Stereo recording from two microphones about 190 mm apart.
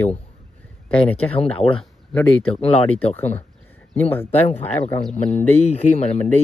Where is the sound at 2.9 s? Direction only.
10° left (ahead or behind).